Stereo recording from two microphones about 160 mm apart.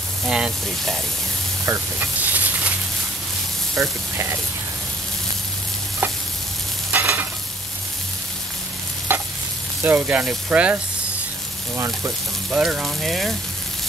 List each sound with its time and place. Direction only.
0.3 s speech: 5° right (ahead or behind)
3.7 s speech: 20° right (ahead or behind)
6.9 s stir: 10° right (ahead or behind)
9.1 s sizzle: 15° right (ahead or behind)
9.8 s speech: 10° right (ahead or behind)
12.4 s speech: 5° right (ahead or behind)